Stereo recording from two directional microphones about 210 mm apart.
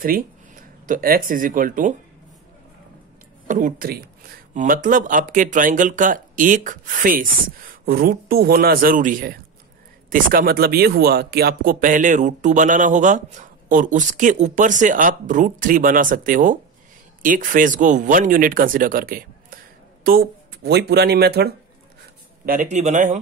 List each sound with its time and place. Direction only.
0.0 s speech: 40° right (ahead or behind)
3.4 s speech: 40° right (ahead or behind)
22.5 s speech: 35° right (ahead or behind)